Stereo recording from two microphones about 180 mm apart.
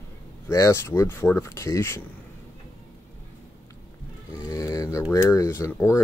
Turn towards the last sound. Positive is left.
turn(degrees=15)  # may be behind; listen again after turning